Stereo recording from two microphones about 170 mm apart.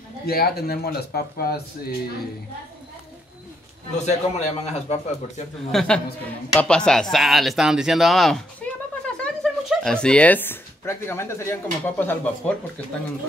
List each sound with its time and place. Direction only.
0.3 s speech: 65° left (ahead or behind)
3.9 s a man's voice: 40° left (ahead or behind)
5.7 s a man's voice: centre (ahead or behind)